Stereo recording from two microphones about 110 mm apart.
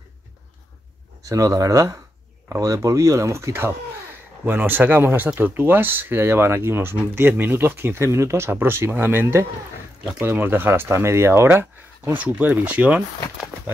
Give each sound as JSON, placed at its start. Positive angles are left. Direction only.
{"t": 1.2, "sound": "speech", "side_deg": -30}